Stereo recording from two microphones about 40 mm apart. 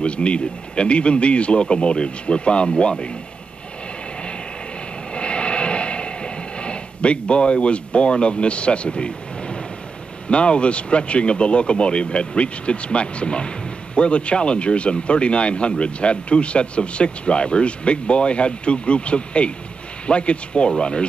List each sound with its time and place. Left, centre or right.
0.0 s speech: left
5.1 s a sound: left
10.3 s speech: left